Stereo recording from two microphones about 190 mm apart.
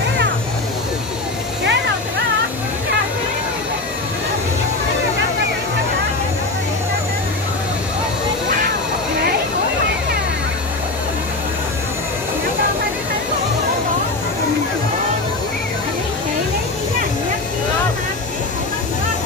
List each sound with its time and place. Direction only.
1.6 s vehicle: 65° right (ahead or behind)